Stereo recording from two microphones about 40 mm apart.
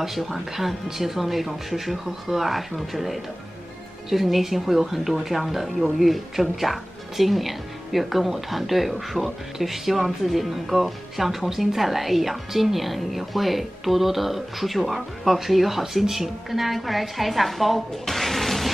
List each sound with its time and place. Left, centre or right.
0.0 s speech: centre